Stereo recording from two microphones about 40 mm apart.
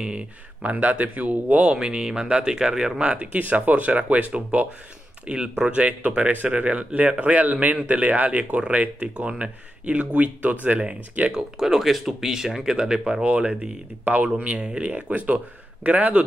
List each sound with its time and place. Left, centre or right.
0.0 s speech: right
0.7 s speech: right
1.8 s speech: right
3.3 s speech: right
11.3 s speech: centre
13.2 s speech: right